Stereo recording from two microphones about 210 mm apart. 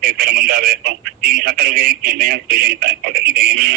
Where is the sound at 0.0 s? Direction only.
45° right (ahead or behind).